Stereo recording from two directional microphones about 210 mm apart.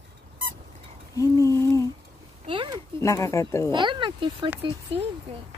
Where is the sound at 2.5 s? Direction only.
25° right (ahead or behind).